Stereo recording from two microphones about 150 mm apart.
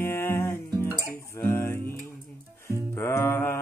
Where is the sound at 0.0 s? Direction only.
15° left (ahead or behind).